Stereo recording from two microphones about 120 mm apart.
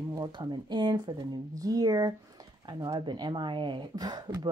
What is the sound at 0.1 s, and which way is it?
Speech, 35° right (ahead or behind).